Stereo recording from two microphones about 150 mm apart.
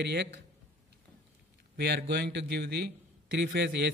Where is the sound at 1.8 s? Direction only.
90° right.